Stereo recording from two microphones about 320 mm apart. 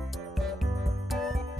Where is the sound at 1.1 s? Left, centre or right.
Centre.